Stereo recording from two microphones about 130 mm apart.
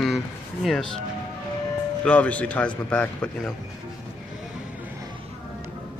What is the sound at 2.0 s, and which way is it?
Speech, 10° left (ahead or behind).